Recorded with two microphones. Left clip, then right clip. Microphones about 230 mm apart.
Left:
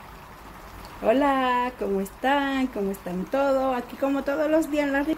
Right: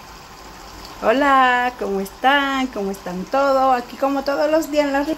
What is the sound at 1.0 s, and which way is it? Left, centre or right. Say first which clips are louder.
Speech: right 7 dB; centre.